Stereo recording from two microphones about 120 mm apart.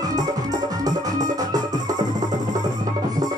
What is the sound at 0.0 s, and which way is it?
Music, 30° right (ahead or behind).